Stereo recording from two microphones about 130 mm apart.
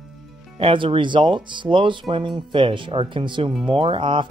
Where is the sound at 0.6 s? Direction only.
45° right (ahead or behind).